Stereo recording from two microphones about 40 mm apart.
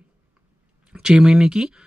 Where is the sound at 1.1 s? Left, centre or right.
Right.